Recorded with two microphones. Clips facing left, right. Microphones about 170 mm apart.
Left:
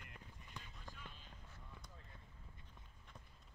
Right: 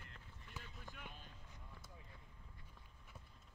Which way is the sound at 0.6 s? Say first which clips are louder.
Right 1 dB; 5° right (ahead or behind).